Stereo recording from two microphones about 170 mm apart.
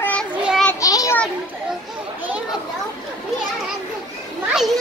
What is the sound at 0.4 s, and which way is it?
Child singing, 5° right (ahead or behind).